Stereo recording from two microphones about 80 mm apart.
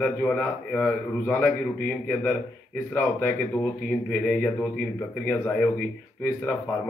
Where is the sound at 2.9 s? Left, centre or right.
Left.